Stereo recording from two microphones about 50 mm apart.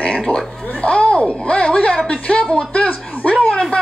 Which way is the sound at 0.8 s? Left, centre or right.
Left.